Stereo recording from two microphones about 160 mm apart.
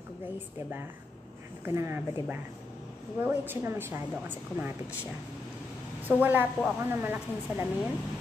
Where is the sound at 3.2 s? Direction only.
15° right (ahead or behind).